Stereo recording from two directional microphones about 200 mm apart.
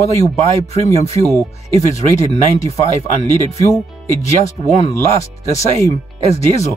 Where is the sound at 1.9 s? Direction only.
15° left (ahead or behind).